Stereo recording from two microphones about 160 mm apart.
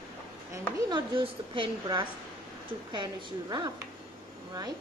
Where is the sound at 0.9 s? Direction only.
30° right (ahead or behind).